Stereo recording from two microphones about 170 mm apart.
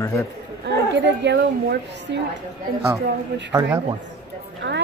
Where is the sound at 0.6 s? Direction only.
90° right.